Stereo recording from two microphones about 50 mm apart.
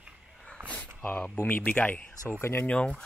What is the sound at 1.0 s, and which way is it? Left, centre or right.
Speech, left.